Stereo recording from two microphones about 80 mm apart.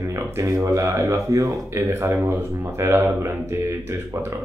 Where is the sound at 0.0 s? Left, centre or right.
Right.